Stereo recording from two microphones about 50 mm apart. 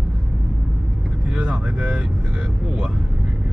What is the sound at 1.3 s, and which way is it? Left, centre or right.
Speech, right.